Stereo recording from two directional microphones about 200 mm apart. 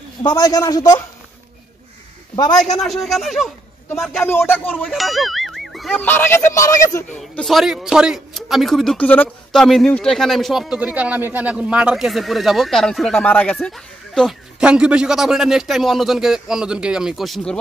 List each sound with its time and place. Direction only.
0.2 s a man's voice: 20° left (ahead or behind)
2.8 s speech: centre (ahead or behind); by 7.1 s 15° left (ahead or behind)
7.2 s speech: centre (ahead or behind)